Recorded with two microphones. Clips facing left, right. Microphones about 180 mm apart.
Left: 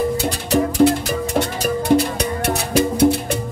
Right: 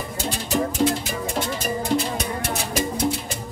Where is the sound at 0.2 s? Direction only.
70° left (ahead or behind).